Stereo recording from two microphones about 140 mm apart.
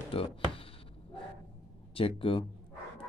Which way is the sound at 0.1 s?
40° left (ahead or behind).